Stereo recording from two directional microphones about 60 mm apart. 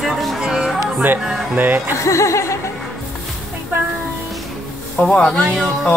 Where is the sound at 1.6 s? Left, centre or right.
Right.